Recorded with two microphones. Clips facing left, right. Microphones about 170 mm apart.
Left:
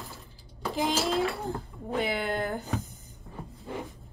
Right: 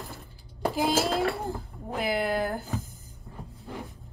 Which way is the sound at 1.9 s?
Centre (ahead or behind).